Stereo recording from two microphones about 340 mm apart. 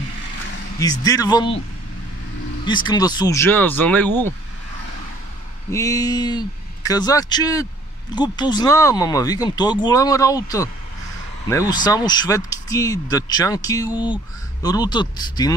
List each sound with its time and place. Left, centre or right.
0.7 s speech: centre
2.6 s speech: centre
5.7 s speech: centre
11.7 s speech: centre